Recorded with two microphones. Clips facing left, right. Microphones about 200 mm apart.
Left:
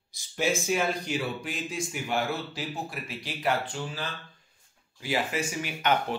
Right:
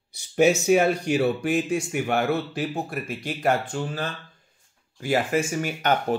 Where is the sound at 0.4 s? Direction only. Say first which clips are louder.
Right 9 dB; 65° right (ahead or behind).